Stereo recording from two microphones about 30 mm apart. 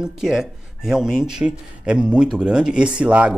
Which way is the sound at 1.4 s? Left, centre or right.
Right.